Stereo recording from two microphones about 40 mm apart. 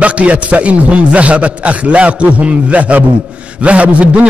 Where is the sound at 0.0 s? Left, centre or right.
Right.